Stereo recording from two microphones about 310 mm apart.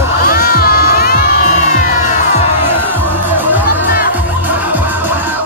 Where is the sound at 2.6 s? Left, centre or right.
Centre.